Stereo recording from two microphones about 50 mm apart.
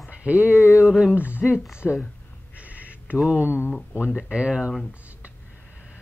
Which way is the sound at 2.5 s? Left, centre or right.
Right.